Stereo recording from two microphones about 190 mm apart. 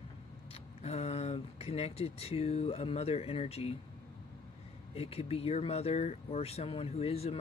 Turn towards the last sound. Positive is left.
turn(degrees=35)  # may be behind; listen again after turning